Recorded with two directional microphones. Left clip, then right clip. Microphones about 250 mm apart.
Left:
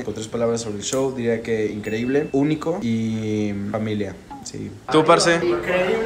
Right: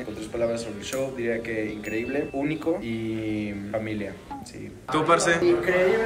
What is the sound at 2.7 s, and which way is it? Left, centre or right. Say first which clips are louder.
Speech: left 2 dB; left.